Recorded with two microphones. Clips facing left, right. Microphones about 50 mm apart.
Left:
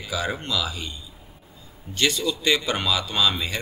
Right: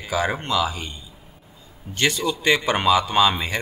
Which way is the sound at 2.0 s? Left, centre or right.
Right.